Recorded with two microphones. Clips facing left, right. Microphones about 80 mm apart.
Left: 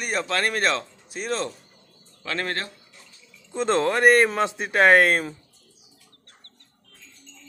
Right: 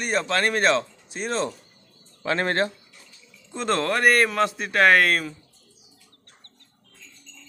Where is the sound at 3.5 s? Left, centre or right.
Centre.